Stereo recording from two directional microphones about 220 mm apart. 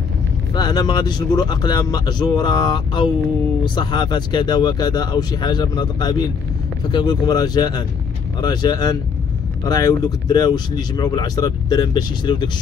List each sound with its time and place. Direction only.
0.6 s speech: 20° left (ahead or behind)